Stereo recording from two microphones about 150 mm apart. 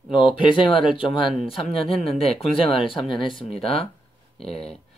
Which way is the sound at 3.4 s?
5° left (ahead or behind).